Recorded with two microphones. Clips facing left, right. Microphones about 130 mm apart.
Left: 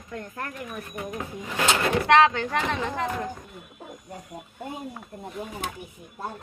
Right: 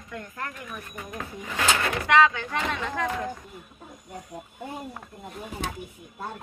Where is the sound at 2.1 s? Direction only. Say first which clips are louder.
Left 1 dB; 65° left (ahead or behind).